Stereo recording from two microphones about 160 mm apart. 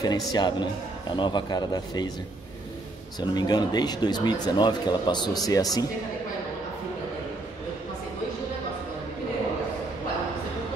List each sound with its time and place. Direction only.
0.0 s speech: 25° left (ahead or behind)
3.2 s speech: 25° left (ahead or behind)